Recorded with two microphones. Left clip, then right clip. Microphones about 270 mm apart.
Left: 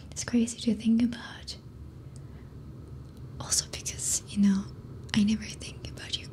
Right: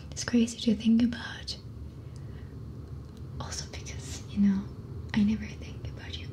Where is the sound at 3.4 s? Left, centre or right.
Left.